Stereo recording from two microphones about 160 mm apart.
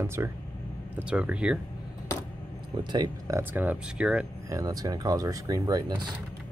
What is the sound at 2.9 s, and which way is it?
Speech, 25° right (ahead or behind).